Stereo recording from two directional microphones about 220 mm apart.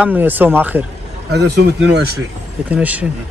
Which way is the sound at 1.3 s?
50° right (ahead or behind).